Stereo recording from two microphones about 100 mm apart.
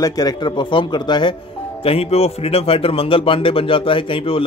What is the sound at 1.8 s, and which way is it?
Speech, 85° left.